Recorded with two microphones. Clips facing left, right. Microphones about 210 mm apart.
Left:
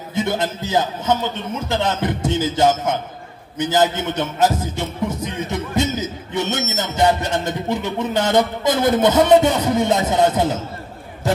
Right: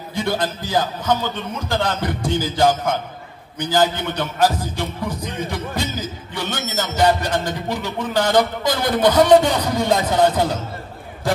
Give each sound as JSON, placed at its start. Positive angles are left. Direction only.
{"t": 0.1, "sound": "a man's voice", "side_deg": 20}